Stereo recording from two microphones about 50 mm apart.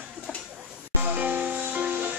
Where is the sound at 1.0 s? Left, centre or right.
Right.